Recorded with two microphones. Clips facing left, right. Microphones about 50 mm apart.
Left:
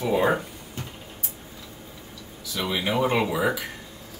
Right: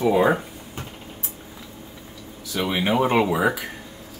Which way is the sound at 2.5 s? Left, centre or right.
Right.